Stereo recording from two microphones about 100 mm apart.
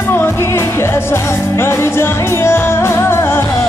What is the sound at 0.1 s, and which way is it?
Music, 25° left (ahead or behind).